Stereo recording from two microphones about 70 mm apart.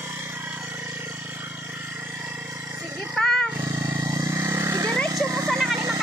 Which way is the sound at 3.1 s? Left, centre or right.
Centre.